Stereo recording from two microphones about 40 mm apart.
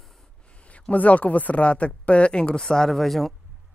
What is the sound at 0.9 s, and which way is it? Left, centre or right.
Speech, left.